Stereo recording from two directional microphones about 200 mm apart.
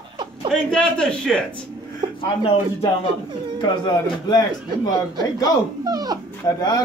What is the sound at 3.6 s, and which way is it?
A man's voice, 20° left (ahead or behind).